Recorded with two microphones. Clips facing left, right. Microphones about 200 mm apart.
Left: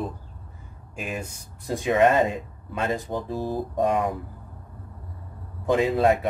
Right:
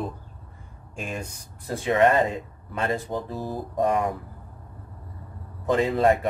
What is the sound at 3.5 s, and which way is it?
Speech, centre (ahead or behind).